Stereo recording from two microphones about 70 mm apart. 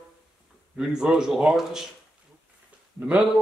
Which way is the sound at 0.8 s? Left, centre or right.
Centre.